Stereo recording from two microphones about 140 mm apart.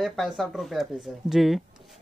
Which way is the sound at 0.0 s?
Centre (ahead or behind).